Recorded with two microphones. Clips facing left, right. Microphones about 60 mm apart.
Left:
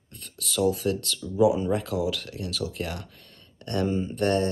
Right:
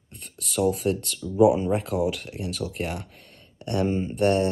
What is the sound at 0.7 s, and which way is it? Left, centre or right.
Speech, right.